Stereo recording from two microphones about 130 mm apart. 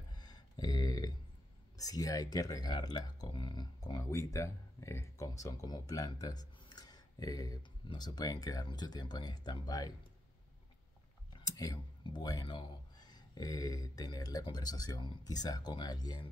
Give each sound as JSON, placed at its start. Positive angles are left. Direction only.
{"t": 0.1, "sound": "a sound", "side_deg": 30}
{"t": 1.8, "sound": "speech", "side_deg": 30}
{"t": 11.3, "sound": "clicking", "side_deg": 30}
{"t": 12.0, "sound": "speech", "side_deg": 35}